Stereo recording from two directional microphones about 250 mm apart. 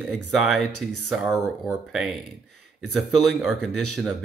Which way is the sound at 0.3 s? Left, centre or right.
Centre.